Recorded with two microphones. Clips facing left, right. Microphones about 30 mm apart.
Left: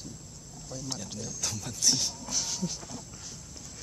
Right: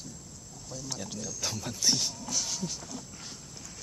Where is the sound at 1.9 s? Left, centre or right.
Centre.